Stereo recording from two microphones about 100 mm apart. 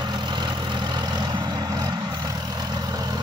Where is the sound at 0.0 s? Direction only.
45° right (ahead or behind).